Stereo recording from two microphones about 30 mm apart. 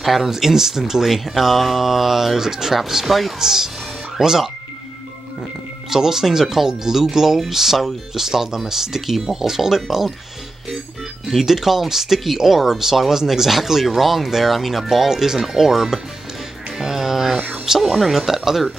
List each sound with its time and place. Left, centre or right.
0.0 s speech: centre
0.3 s speech: centre
3.1 s speech: centre
3.3 s speech: centre
5.9 s speech: centre
11.2 s speech: centre
16.7 s music: centre
17.7 s speech: centre